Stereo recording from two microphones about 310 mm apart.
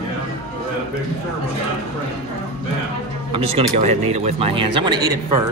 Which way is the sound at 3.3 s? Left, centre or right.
Centre.